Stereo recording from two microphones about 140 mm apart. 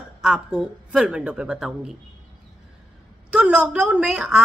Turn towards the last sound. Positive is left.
turn(degrees=-5)  # may be behind; listen again after turning